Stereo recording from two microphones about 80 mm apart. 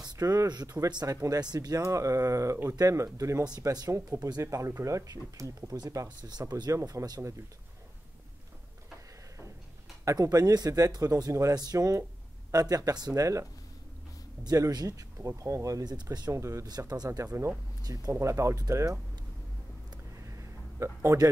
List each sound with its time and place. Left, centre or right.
0.0 s a sound: right
0.5 s speech: right
1.0 s speech: right
1.4 s speech: right
1.8 s speech: right
6.0 s speech: right
6.4 s speech: right
10.0 s speech: right
13.1 s speech: right
14.4 s speech: right
16.3 s speech: right
16.6 s speech: right
18.2 s speech: right
20.2 s a sound: right